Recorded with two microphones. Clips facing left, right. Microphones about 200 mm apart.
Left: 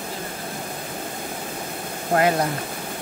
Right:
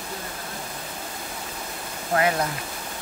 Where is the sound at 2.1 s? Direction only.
35° left (ahead or behind).